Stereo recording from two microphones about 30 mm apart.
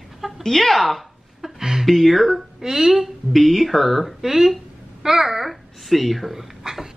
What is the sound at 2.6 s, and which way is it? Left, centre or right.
Speech, centre.